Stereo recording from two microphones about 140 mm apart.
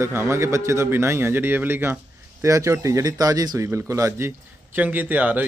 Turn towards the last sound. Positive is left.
turn(degrees=-10)  # may be behind; listen again after turning